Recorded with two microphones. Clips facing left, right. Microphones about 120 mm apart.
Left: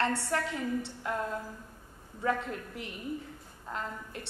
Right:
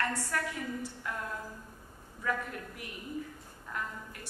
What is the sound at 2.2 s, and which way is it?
A woman's voice, 25° left (ahead or behind).